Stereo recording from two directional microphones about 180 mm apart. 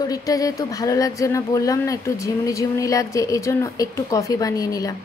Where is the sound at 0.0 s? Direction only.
20° left (ahead or behind).